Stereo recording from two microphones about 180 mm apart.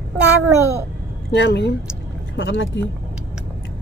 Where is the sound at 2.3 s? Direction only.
90° left.